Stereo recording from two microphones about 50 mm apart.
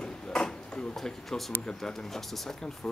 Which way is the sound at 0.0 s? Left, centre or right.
Centre.